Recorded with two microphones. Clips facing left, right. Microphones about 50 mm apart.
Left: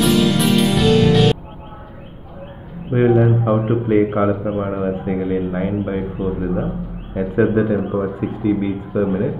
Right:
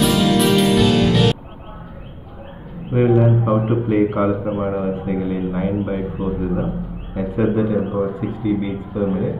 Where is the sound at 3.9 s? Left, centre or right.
Left.